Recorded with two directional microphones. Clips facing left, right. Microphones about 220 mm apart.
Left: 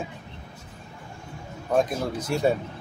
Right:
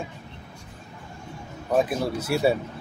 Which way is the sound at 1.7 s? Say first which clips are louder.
Right 1 dB; 5° right (ahead or behind).